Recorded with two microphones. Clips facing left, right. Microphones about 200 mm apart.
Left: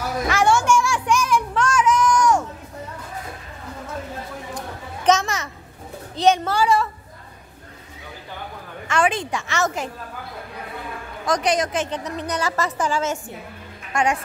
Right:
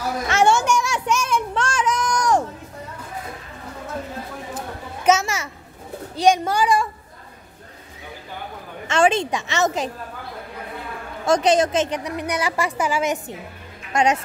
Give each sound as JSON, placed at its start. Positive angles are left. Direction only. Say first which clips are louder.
{"t": 0.3, "sound": "music", "louder": "even", "side_deg": -25}
{"t": 4.6, "sound": "children playing", "louder": "right 1 dB", "side_deg": -10}
{"t": 6.1, "sound": "a woman's voice", "louder": "right 1 dB", "side_deg": -10}
{"t": 8.8, "sound": "a woman's voice", "louder": "right 3 dB", "side_deg": -25}
{"t": 11.2, "sound": "a woman's voice", "louder": "right 4 dB", "side_deg": -25}